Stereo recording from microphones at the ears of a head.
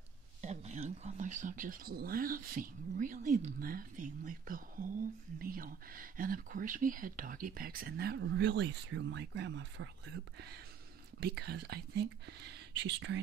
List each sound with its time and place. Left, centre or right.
1.1 s speech: right